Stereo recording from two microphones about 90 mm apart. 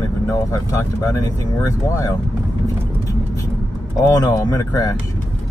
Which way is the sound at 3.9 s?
40° left (ahead or behind).